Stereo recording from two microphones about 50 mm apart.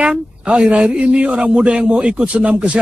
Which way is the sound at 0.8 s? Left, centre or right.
Right.